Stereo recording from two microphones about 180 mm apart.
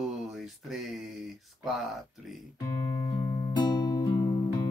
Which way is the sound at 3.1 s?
25° left (ahead or behind).